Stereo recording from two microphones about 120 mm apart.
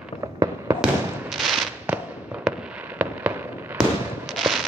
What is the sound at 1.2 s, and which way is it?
Fireworks, centre (ahead or behind).